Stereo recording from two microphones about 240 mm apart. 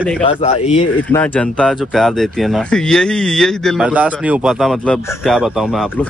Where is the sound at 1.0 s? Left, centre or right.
Centre.